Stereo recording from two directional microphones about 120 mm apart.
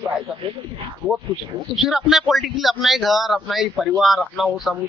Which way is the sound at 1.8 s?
5° right (ahead or behind).